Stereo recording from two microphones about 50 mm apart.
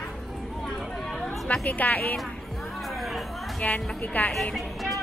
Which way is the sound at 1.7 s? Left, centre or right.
Left.